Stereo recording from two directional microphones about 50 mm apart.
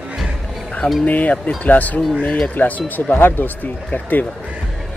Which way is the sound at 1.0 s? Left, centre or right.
Left.